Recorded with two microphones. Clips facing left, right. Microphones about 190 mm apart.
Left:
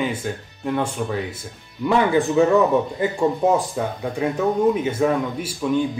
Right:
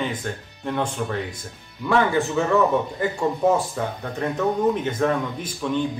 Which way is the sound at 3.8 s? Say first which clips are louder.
Left 3 dB; 10° left (ahead or behind).